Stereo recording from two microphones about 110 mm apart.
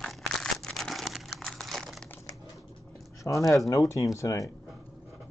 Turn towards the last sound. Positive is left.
turn(degrees=30)  # may be behind; listen again after turning